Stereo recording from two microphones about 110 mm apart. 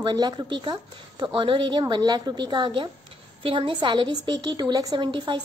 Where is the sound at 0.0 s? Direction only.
40° right (ahead or behind).